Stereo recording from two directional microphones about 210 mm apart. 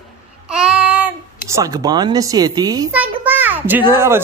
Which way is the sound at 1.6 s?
20° right (ahead or behind).